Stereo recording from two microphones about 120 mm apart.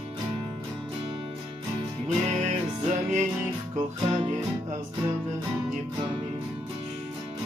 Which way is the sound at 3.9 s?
50° right (ahead or behind).